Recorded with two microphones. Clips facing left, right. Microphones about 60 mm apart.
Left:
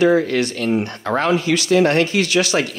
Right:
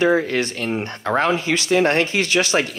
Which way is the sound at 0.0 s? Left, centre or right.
Right.